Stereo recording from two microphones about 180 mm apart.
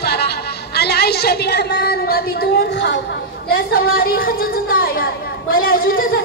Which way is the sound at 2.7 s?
85° left.